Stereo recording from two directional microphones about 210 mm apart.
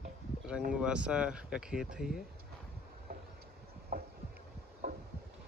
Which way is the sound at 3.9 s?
45° right (ahead or behind).